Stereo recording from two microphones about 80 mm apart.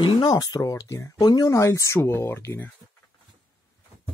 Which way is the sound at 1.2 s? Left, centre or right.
Left.